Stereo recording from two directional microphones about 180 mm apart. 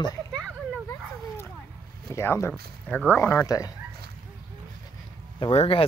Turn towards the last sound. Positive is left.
turn(degrees=30)  # may be behind; listen again after turning